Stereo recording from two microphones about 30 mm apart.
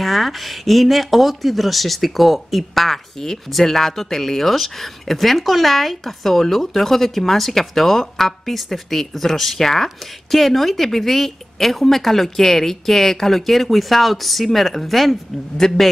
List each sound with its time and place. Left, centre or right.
0.0 s speech: centre
15.5 s speech: centre